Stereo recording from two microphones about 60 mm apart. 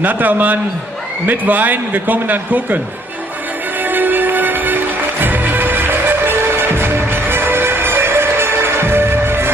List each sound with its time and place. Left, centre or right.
0.0 s speech: right
3.8 s music: right